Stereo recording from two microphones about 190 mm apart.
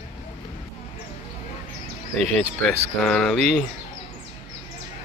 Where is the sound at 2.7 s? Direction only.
5° left (ahead or behind).